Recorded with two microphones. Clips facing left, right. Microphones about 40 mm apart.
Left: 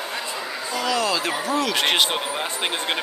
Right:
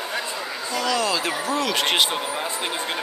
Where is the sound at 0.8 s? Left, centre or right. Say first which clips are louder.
Even; centre.